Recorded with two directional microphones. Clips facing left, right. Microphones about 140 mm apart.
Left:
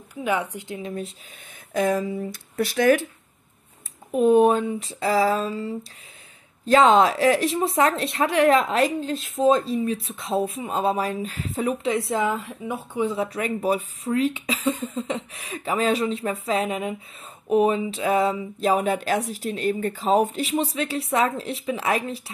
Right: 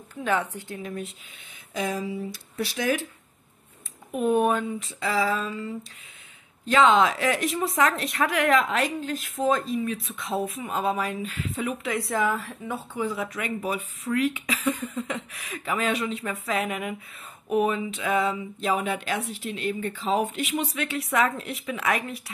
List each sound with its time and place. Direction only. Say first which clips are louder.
0.1 s speech: left 1 dB; 10° left (ahead or behind)
1.7 s speech: left 6 dB; 55° left (ahead or behind)
4.1 s a woman's voice: left 6 dB; 30° left (ahead or behind)